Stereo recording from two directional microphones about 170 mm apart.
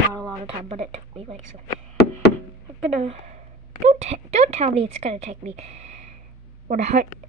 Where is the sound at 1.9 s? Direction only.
75° left (ahead or behind).